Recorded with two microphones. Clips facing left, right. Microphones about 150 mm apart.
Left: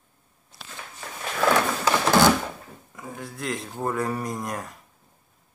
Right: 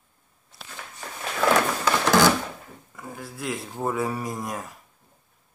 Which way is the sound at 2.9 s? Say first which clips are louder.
Left 1 dB; centre (ahead or behind).